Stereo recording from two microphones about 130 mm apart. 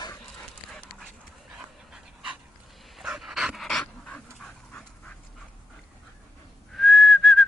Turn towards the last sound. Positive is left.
turn(degrees=0)  # may be behind; listen again after turning